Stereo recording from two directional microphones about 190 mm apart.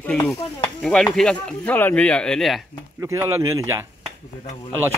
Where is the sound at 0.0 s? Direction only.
5° left (ahead or behind).